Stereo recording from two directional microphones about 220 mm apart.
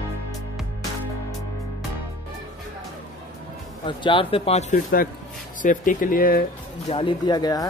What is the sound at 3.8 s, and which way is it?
Speech, 20° left (ahead or behind).